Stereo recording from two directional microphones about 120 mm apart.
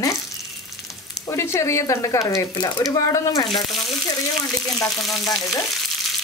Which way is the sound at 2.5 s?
35° left (ahead or behind).